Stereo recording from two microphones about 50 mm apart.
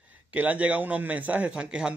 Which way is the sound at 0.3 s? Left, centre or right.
Right.